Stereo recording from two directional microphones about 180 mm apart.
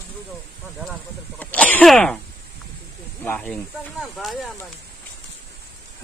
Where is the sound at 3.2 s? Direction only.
10° left (ahead or behind).